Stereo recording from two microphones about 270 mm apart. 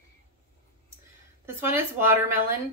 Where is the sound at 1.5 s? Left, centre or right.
Centre.